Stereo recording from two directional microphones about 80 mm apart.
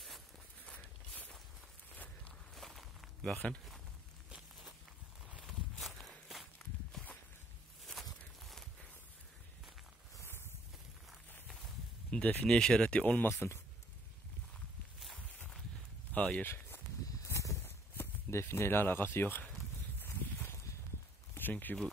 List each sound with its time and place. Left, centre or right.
0.7 s walk: centre
2.5 s walk: centre
3.4 s speech: centre
5.4 s walk: centre
7.8 s walk: centre
10.2 s a sound: left
12.1 s speech: centre
13.3 s speech: left
15.1 s walk: centre
16.1 s a sound: centre
17.2 s a sound: left
17.6 s speech: left
20.0 s a sound: left
21.4 s speech: left